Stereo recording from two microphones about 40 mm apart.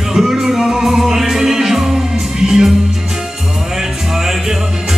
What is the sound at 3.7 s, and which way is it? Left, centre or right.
Music, centre.